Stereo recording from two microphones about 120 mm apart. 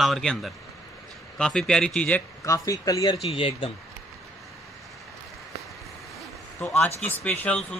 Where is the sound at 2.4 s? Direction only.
30° left (ahead or behind).